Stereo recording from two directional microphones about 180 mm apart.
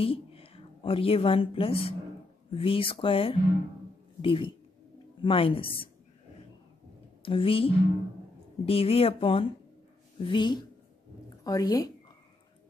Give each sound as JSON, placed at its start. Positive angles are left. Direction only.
{"t": 0.0, "sound": "a woman's voice", "side_deg": 30}
{"t": 7.2, "sound": "speech", "side_deg": 30}